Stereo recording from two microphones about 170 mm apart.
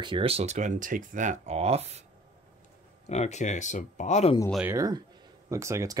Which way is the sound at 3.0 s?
40° left (ahead or behind).